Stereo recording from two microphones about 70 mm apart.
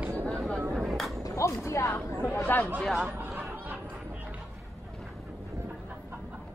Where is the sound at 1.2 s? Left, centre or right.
Left.